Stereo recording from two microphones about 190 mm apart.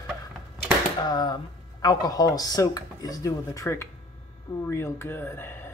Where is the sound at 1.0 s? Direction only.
20° left (ahead or behind).